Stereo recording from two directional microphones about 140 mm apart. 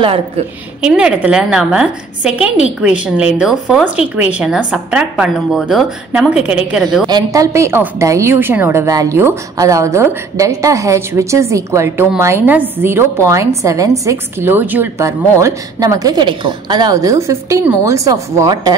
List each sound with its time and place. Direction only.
0.8 s a woman's voice: 5° right (ahead or behind)
7.1 s a woman's voice: 25° right (ahead or behind)